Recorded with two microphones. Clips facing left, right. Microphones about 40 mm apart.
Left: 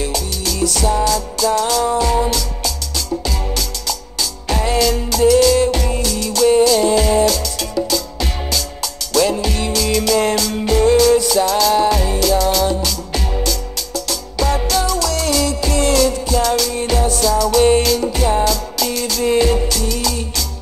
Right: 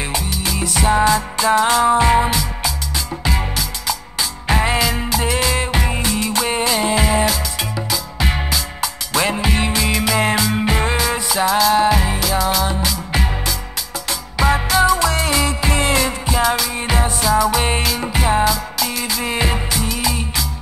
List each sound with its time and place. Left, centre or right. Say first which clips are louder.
0.0 s music: left 1 dB; right